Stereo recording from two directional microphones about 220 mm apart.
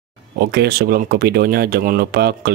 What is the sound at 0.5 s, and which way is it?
Speech, 45° right (ahead or behind).